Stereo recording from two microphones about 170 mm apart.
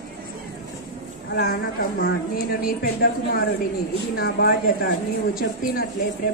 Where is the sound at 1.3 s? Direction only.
60° left (ahead or behind).